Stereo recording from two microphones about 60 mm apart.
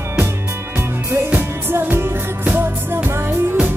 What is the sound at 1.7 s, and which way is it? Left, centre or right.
Music, right.